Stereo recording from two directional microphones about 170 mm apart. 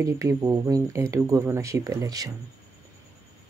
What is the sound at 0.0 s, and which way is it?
Speech, 20° right (ahead or behind).